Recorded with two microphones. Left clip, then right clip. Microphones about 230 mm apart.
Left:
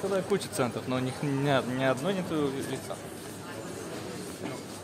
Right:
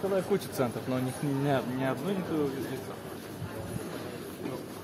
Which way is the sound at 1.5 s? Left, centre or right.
Left.